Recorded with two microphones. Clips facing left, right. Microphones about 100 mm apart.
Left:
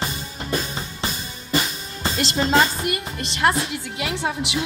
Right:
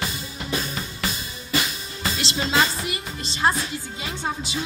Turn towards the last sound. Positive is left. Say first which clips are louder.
# left 4 dB
turn(degrees=70)  # may be behind; listen again after turning